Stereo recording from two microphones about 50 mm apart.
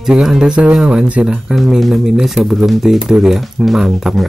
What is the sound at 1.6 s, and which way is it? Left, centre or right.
Speech, centre.